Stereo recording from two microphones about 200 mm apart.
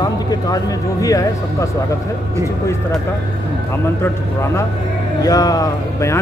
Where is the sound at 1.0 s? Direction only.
15° left (ahead or behind).